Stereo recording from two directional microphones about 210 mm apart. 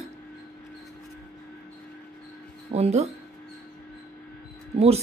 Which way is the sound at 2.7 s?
30° right (ahead or behind).